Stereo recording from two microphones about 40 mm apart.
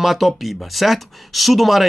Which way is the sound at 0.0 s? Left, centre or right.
Centre.